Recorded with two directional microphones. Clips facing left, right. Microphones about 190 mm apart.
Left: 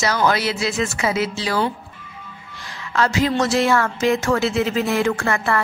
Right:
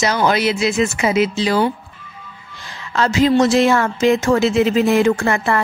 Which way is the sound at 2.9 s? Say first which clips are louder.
Right 5 dB; 25° right (ahead or behind).